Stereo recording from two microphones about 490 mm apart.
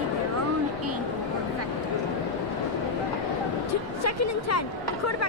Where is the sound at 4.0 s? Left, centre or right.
Left.